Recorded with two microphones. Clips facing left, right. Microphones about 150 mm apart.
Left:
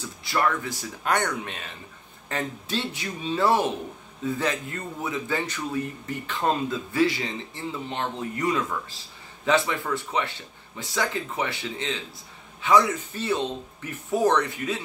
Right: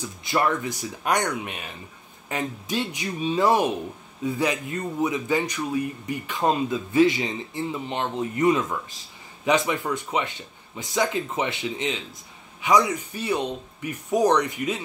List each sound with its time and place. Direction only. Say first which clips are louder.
0.0 s speech: right 1 dB; 20° right (ahead or behind)